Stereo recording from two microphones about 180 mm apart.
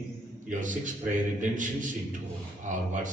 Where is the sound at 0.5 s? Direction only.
45° right (ahead or behind).